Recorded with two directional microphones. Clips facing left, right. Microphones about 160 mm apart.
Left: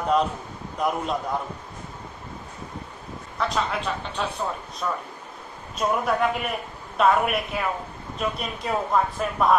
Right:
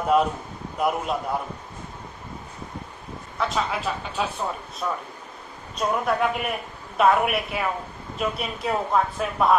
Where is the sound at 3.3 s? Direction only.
Centre (ahead or behind).